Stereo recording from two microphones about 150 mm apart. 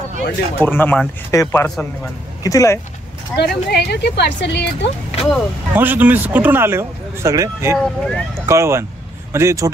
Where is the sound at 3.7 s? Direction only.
90° left.